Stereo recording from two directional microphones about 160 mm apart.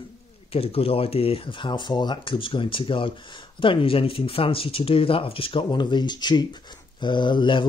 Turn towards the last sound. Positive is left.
turn(degrees=30)  # may be behind; listen again after turning